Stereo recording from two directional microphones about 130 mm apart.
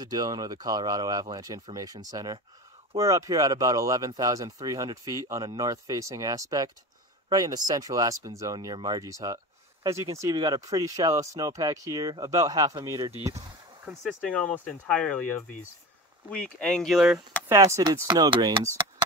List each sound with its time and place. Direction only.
0.0 s speech: 30° right (ahead or behind)
14.0 s speech: 10° left (ahead or behind)
16.3 s speech: 10° left (ahead or behind)
17.5 s speech: 20° right (ahead or behind)